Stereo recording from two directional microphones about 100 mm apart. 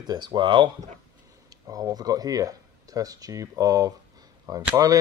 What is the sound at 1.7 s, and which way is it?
Speech, 40° right (ahead or behind).